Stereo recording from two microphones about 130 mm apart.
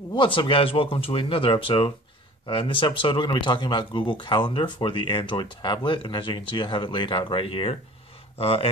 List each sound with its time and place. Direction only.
0.1 s speech: 40° left (ahead or behind)